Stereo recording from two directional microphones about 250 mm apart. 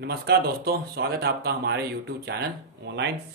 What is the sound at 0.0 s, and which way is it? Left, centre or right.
Speech, right.